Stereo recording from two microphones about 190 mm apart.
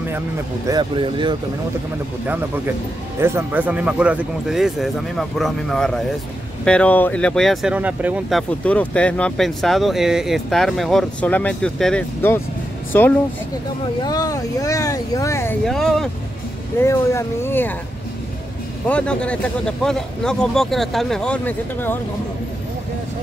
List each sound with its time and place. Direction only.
0.7 s speech: 25° right (ahead or behind)
2.2 s speech: 10° right (ahead or behind); by 15.5 s 15° left (ahead or behind)
15.6 s speech: centre (ahead or behind)
16.8 s speech: 15° left (ahead or behind)
18.9 s speech: 5° left (ahead or behind)